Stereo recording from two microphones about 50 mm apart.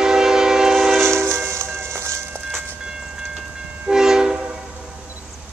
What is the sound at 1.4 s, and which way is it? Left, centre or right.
Train, right.